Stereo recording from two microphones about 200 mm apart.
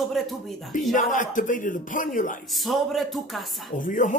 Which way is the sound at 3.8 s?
40° left (ahead or behind).